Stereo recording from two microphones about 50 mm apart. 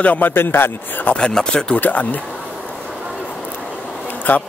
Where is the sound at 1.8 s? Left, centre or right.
Left.